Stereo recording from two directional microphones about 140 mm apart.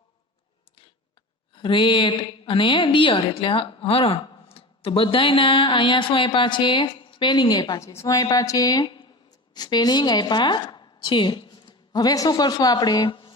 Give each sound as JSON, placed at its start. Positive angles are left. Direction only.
{"t": 1.5, "sound": "a woman's voice", "side_deg": 35}